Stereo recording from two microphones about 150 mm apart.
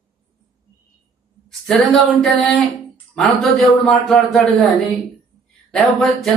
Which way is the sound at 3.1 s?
5° left (ahead or behind).